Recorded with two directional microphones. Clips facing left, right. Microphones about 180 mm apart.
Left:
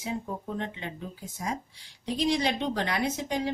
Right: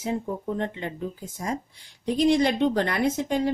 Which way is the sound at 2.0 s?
50° right (ahead or behind).